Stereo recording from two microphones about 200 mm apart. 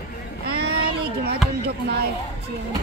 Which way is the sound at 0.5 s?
50° right (ahead or behind).